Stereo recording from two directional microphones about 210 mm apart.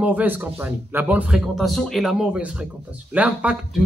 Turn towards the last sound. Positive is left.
turn(degrees=-5)  # may be behind; listen again after turning